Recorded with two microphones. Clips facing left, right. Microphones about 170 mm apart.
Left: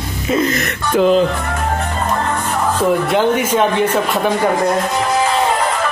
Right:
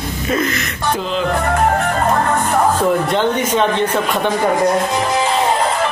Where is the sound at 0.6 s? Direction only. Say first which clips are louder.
Left 7 dB; 60° left (ahead or behind).